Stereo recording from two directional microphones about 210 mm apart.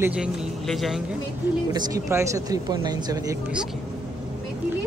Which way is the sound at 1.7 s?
20° right (ahead or behind).